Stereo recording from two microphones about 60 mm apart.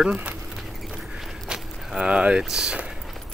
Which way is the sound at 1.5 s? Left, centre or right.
Centre.